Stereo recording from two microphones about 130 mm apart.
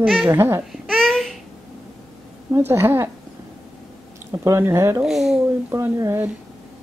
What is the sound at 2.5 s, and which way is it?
Speech, 20° right (ahead or behind).